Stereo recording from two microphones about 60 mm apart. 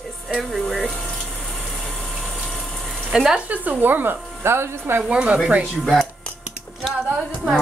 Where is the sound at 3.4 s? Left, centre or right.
Right.